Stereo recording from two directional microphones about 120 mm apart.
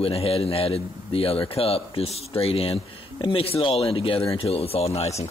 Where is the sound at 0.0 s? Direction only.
55° left (ahead or behind).